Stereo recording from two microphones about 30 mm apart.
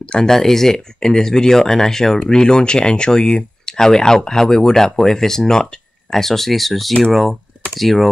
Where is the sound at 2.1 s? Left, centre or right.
Left.